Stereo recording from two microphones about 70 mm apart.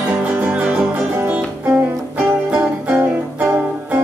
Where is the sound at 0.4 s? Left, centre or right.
Centre.